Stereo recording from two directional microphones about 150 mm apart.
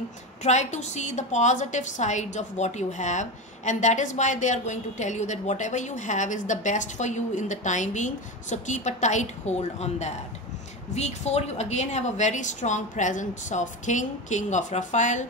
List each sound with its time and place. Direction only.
0.4 s a woman's voice: 50° left (ahead or behind)